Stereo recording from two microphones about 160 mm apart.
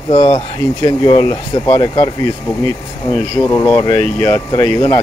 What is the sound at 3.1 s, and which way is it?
Speech, 15° left (ahead or behind).